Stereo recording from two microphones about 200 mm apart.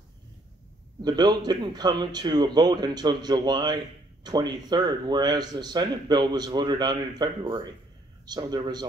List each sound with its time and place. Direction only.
1.0 s speech: 20° right (ahead or behind)